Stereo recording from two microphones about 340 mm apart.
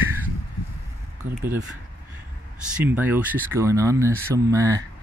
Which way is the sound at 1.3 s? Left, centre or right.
Centre.